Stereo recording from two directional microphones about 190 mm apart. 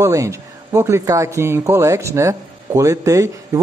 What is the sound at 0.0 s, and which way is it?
Speech, 15° right (ahead or behind).